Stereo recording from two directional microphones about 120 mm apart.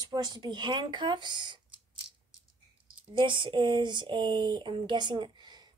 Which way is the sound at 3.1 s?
45° right (ahead or behind).